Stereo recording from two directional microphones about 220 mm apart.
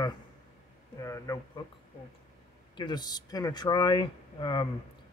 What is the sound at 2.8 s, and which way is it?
Speech, 20° left (ahead or behind).